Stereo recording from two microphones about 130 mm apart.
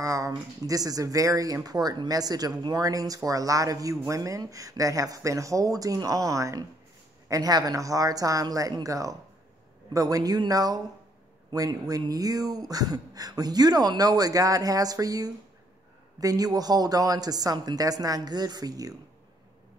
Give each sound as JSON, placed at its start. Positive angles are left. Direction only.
{"t": 0.0, "sound": "speech", "side_deg": -25}
{"t": 11.9, "sound": "speech", "side_deg": -30}